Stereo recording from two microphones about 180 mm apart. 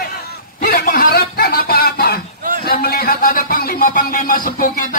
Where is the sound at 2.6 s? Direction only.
60° left (ahead or behind).